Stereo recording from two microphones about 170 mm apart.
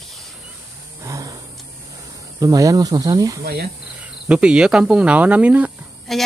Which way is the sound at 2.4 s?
20° right (ahead or behind).